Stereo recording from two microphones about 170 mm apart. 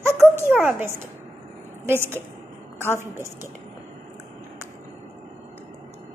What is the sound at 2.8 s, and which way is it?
Speech, 15° left (ahead or behind).